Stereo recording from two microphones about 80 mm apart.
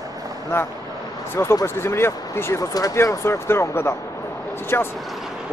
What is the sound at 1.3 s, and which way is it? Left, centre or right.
Speech, left.